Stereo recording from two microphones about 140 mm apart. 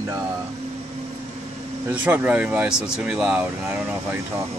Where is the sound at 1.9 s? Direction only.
10° right (ahead or behind).